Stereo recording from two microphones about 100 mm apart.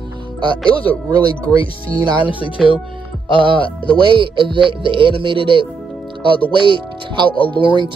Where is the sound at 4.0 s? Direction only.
55° right (ahead or behind).